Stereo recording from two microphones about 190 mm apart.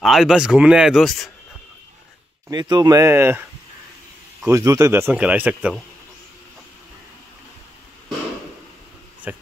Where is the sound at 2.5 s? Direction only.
20° right (ahead or behind).